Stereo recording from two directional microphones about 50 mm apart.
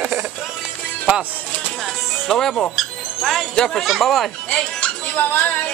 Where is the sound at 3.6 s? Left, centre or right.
Centre.